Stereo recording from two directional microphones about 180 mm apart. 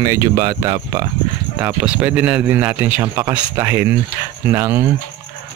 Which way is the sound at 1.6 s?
10° right (ahead or behind).